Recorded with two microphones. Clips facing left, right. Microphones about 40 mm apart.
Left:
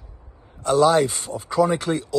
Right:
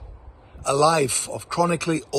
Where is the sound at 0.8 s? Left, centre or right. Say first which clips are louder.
Left 2 dB; left.